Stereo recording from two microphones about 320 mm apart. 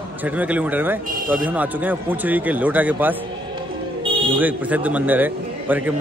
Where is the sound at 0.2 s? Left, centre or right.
Centre.